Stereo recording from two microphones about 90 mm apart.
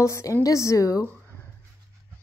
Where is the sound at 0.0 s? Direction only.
35° left (ahead or behind).